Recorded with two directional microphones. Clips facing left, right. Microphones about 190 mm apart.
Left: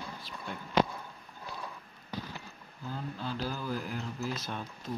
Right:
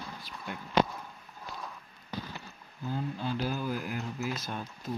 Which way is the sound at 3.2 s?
15° right (ahead or behind).